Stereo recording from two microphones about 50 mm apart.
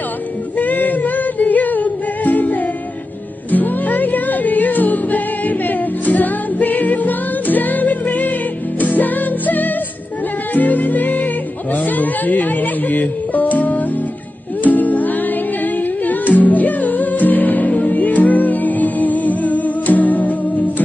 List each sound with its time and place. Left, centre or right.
0.6 s music: left